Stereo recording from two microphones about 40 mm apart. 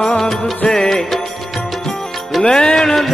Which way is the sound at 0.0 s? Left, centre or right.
Centre.